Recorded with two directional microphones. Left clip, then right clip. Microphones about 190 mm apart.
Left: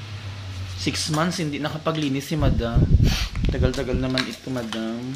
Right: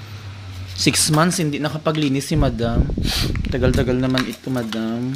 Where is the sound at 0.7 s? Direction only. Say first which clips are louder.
Right 7 dB; 55° right (ahead or behind).